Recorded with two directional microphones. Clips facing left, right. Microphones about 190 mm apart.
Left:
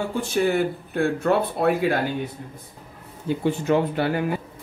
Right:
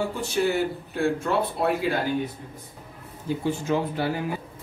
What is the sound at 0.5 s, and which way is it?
Speech, 55° left (ahead or behind).